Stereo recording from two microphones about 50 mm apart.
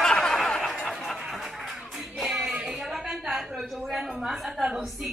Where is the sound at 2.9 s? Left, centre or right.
Centre.